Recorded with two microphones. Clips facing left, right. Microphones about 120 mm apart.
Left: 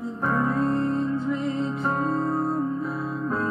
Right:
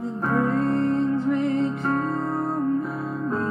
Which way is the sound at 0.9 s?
60° right (ahead or behind).